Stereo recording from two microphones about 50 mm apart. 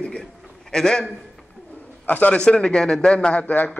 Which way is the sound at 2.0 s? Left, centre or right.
Left.